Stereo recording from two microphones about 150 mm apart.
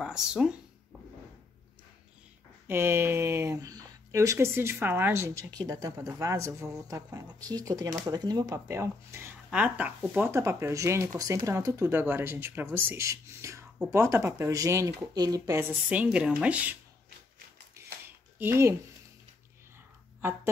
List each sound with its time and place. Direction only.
0.0 s speech: 5° right (ahead or behind)
2.7 s speech: 15° right (ahead or behind)
15.9 s speech: 10° right (ahead or behind)
17.7 s a sound: 15° right (ahead or behind)